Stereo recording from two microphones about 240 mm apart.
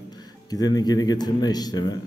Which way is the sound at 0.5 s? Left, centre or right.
Centre.